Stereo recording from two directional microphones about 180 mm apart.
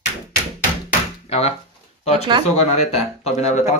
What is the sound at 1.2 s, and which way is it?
Speech, 35° left (ahead or behind).